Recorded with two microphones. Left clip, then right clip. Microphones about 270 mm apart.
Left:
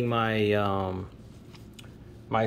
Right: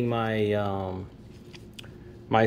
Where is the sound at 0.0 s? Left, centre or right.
Centre.